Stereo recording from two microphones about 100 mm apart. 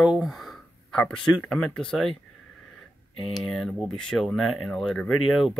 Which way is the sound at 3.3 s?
5° left (ahead or behind).